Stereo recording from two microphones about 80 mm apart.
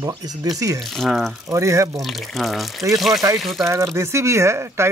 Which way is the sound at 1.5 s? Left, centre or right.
Right.